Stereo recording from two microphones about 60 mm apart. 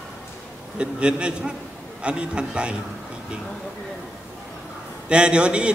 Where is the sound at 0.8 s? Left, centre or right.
Centre.